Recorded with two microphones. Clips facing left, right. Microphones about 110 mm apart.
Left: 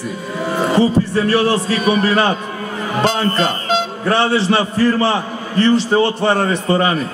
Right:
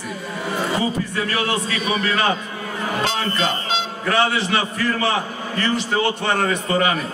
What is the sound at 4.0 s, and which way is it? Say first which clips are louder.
A man's voice: left 2 dB; 30° left (ahead or behind).